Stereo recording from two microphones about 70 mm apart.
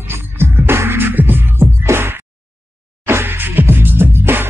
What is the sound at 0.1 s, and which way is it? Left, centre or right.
Music, right.